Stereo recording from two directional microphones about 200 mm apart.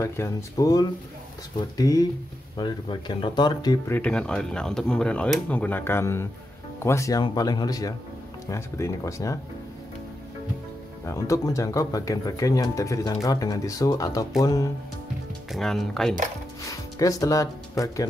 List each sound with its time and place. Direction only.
0.0 s speech: 15° left (ahead or behind)
3.9 s speech: 5° left (ahead or behind)
11.1 s speech: 15° left (ahead or behind)
15.5 s speech: centre (ahead or behind)
17.0 s speech: 15° left (ahead or behind)